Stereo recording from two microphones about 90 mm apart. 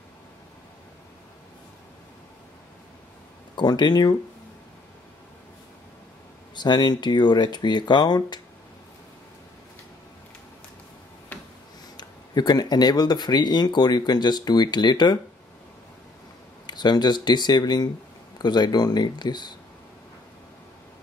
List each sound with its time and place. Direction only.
3.5 s speech: 50° left (ahead or behind)
6.5 s speech: 55° left (ahead or behind)
11.3 s a sound: 20° left (ahead or behind)
12.0 s speech: 50° left (ahead or behind)
16.6 s speech: 55° left (ahead or behind)